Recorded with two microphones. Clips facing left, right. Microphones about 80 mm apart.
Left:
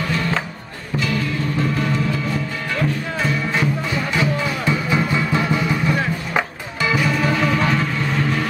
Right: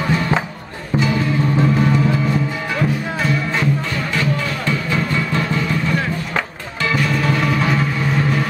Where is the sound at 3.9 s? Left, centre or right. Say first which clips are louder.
Even; centre.